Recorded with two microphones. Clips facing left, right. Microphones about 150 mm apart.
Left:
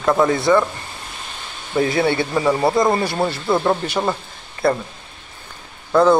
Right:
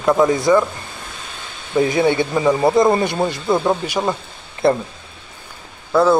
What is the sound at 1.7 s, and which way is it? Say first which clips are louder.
Speech: right 2 dB; 20° right (ahead or behind).